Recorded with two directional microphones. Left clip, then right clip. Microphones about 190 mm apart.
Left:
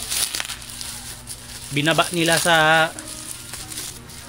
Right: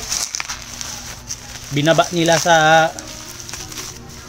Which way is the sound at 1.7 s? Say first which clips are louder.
Right 4 dB; 15° right (ahead or behind).